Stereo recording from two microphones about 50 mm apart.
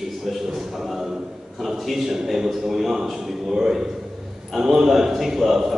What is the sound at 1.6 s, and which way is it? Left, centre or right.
A man's voice, centre.